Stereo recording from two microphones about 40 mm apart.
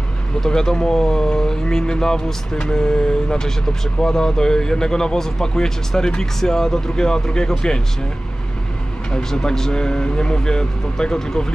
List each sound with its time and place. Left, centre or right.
0.4 s speech: centre
9.3 s speech: centre